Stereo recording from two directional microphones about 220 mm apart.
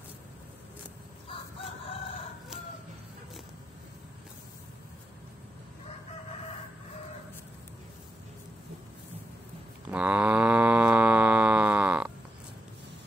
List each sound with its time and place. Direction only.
1.3 s crowing: 25° left (ahead or behind)
9.8 s cattle: 5° right (ahead or behind)